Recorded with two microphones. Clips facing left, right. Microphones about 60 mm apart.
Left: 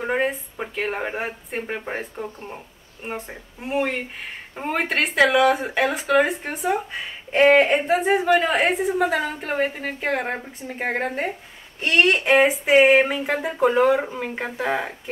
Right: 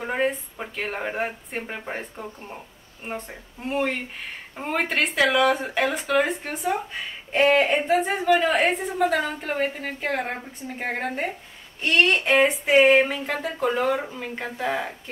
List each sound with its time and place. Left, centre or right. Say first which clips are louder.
0.0 s speech: left 2 dB; centre; by 15.0 s left